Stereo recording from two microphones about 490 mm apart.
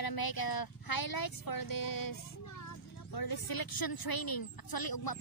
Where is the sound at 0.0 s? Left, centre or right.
Left.